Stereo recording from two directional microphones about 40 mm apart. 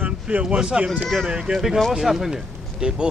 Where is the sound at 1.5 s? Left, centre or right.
Centre.